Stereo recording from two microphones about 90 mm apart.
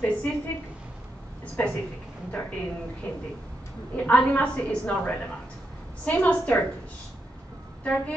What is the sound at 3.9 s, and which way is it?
Speech, 15° left (ahead or behind).